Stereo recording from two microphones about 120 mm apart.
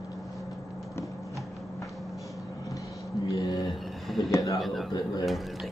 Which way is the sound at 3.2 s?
30° left (ahead or behind).